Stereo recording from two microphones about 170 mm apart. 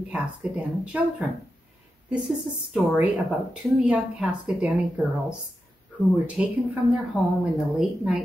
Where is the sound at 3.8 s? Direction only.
5° right (ahead or behind).